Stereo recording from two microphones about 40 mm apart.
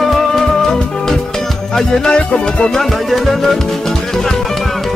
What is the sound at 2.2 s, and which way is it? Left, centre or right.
Music, left.